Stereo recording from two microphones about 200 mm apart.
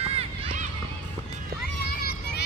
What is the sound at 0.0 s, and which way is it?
Run, 30° right (ahead or behind).